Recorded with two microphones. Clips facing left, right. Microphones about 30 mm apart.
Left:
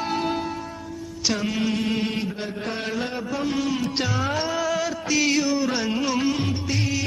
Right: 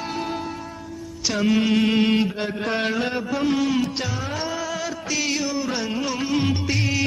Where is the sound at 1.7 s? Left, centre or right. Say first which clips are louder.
Right 6 dB; right.